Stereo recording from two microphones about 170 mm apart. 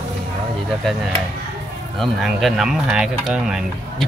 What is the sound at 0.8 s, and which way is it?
Speech, centre (ahead or behind).